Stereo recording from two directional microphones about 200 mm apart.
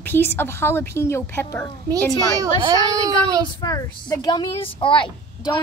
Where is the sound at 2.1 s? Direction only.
20° right (ahead or behind).